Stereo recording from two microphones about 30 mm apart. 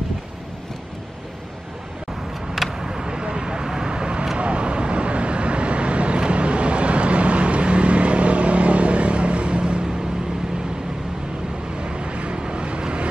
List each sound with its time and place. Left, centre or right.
2.5 s vehicle: centre; by 3.6 s right
3.6 s vehicle: centre
3.9 s vehicle: right
11.8 s vehicle: right